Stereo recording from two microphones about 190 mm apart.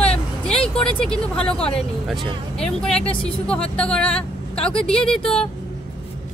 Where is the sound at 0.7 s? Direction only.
5° left (ahead or behind).